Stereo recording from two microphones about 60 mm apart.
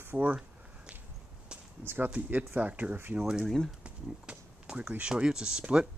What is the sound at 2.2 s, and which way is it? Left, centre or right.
Speech, right.